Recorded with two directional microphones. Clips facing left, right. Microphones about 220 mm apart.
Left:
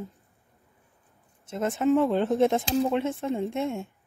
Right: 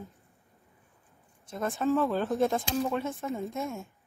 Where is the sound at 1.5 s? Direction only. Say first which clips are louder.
Left 5 dB; 20° left (ahead or behind).